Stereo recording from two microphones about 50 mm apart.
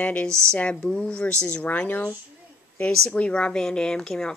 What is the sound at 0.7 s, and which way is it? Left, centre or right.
Speech, centre.